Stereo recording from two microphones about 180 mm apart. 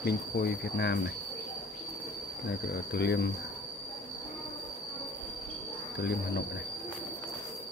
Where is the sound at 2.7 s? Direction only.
70° left (ahead or behind).